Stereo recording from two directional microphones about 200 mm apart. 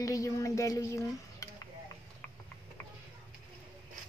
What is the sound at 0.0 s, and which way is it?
Speech, 15° left (ahead or behind).